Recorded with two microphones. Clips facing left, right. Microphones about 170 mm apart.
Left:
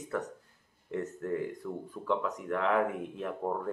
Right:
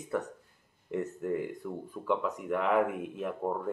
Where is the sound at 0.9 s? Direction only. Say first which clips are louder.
Right 1 dB; 10° right (ahead or behind).